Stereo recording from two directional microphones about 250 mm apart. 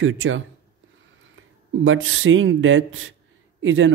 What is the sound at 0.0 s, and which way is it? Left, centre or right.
Speech, right.